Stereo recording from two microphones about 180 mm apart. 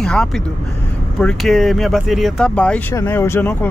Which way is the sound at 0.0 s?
5° left (ahead or behind).